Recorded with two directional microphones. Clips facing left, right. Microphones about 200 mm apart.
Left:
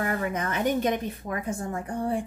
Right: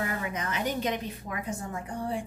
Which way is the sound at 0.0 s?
55° left (ahead or behind).